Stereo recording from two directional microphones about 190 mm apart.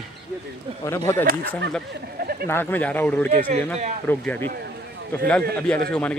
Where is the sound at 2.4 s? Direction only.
10° left (ahead or behind).